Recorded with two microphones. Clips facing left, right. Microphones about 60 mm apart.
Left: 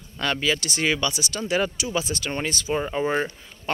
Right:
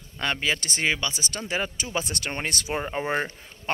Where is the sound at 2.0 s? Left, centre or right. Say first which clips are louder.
Left 3 dB; right.